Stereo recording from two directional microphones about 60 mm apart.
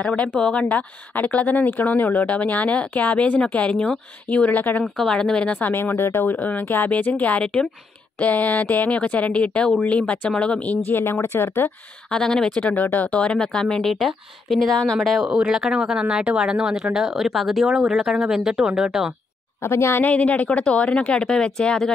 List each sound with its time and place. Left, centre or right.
0.0 s a woman's voice: left
0.7 s a woman's voice: left
4.3 s speech: left
4.8 s speech: centre
5.1 s a woman's voice: centre
5.6 s speech: left
6.3 s speech: left
10.9 s speech: left
12.1 s a woman's voice: centre
12.5 s a woman's voice: centre
15.2 s speech: centre
19.6 s speech: left
20.0 s a woman's voice: left